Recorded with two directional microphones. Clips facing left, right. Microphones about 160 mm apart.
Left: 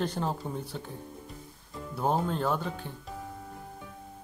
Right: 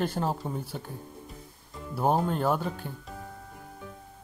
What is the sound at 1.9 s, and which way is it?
Speech, 5° right (ahead or behind).